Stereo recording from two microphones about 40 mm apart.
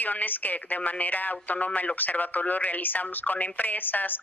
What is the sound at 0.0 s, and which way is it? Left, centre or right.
Speech, left.